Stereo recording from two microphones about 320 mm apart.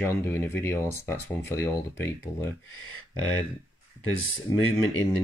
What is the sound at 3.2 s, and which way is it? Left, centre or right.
Speech, left.